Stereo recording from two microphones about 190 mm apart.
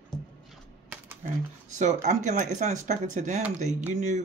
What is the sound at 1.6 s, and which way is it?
Speech, 40° right (ahead or behind).